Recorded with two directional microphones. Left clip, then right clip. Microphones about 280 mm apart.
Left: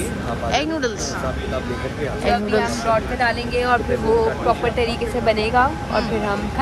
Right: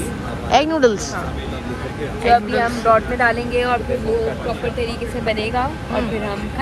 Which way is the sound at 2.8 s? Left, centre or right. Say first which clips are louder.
Right 4 dB; centre.